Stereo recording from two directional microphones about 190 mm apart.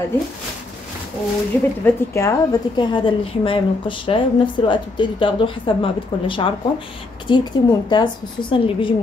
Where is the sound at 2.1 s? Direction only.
20° left (ahead or behind).